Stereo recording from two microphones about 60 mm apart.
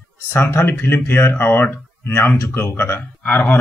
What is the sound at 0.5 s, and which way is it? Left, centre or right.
Speech, left.